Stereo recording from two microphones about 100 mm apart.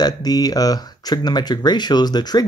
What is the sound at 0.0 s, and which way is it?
Speech, 40° left (ahead or behind).